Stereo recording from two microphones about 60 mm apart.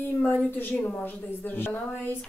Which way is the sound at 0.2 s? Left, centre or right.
Left.